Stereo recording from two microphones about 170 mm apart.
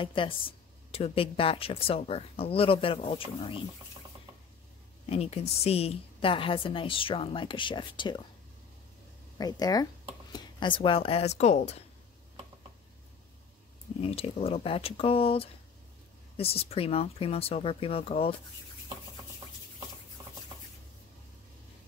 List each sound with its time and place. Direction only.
0.0 s a woman's voice: 30° left (ahead or behind)
5.1 s a woman's voice: 35° left (ahead or behind)
9.4 s a woman's voice: 20° left (ahead or behind); by 11.8 s 40° left (ahead or behind)
14.0 s a woman's voice: 35° left (ahead or behind)
20.2 s a sound: 20° right (ahead or behind)